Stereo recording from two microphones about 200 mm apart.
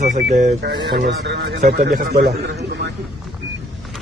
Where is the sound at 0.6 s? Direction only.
55° right (ahead or behind).